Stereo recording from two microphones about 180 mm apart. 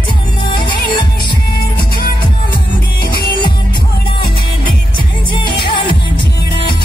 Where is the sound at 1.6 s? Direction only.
55° left (ahead or behind).